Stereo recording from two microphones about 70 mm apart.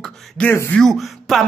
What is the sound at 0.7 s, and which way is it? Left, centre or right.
Speech, centre.